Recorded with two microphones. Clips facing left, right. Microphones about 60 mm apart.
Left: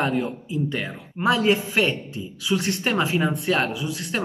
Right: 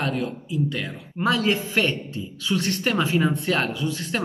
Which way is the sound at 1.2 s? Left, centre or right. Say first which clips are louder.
Left 2 dB; centre.